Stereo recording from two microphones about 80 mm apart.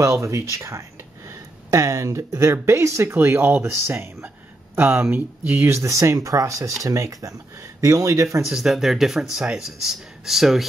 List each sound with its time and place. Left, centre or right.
0.0 s speech: right
8.5 s speech: centre